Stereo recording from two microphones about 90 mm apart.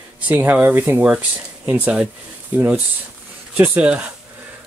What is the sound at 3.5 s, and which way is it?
Speech, 20° right (ahead or behind).